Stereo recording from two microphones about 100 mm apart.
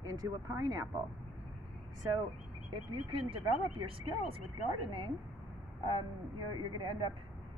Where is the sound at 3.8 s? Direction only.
65° right (ahead or behind).